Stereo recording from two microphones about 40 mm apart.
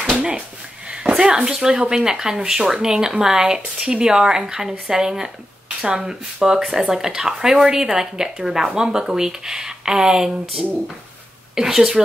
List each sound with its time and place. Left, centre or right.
0.8 s speech: right